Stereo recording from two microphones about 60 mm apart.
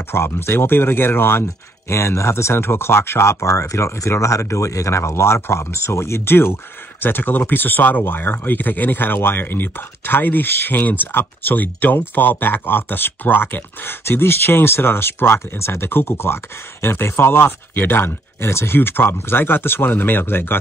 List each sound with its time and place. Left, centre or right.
0.1 s speech: left